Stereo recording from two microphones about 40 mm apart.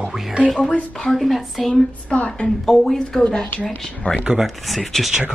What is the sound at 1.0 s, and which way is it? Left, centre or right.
Speech, centre.